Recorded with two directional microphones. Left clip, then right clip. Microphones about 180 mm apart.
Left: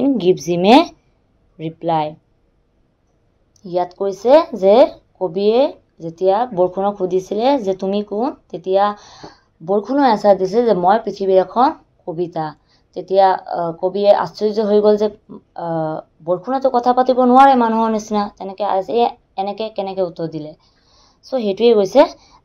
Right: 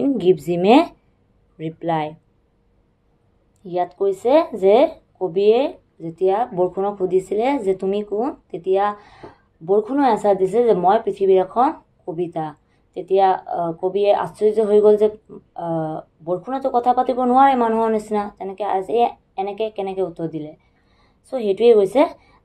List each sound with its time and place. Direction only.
0.0 s a woman's voice: 30° left (ahead or behind)
3.6 s speech: 35° left (ahead or behind)